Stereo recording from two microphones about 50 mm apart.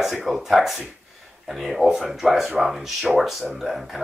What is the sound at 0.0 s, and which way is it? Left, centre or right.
Speech, centre.